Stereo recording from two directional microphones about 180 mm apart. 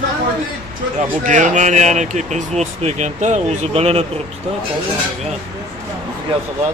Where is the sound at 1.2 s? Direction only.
45° right (ahead or behind).